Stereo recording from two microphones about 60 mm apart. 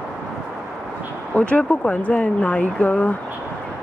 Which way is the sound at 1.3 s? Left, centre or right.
Left.